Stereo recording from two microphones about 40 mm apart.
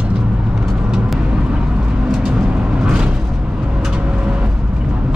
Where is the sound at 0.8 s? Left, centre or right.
Centre.